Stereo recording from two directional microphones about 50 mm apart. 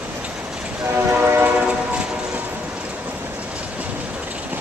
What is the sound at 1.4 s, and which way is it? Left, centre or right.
Train, right.